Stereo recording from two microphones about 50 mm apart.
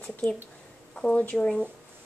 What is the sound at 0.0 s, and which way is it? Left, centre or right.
Speech, centre.